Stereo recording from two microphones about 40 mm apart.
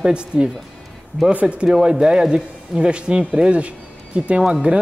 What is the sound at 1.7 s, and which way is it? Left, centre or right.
A man's voice, centre.